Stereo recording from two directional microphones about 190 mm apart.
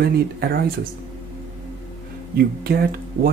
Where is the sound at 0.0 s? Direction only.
55° right (ahead or behind).